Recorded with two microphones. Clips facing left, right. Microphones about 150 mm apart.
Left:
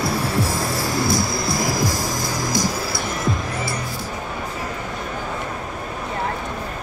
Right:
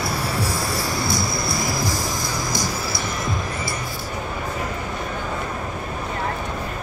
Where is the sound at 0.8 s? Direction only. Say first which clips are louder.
Left 3 dB; 90° left.